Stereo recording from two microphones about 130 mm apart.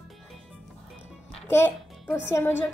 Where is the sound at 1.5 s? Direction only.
20° left (ahead or behind).